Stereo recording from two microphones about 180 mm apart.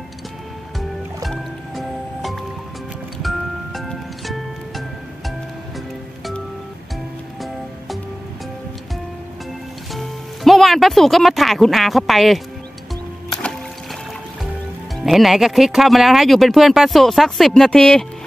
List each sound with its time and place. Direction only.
0.7 s music: centre (ahead or behind)
9.9 s speech: centre (ahead or behind)
13.3 s music: 5° left (ahead or behind)
15.0 s speech: centre (ahead or behind)